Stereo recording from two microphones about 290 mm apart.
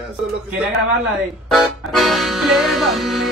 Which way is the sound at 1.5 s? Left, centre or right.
Centre.